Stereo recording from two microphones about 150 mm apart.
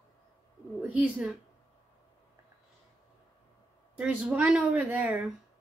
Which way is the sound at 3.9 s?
10° right (ahead or behind).